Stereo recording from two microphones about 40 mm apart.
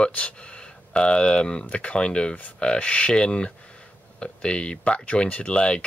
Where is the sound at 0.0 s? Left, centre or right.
Left.